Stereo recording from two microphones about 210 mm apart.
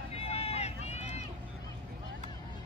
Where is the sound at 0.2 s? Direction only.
30° left (ahead or behind).